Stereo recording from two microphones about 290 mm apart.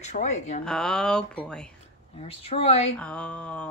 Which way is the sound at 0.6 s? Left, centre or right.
Centre.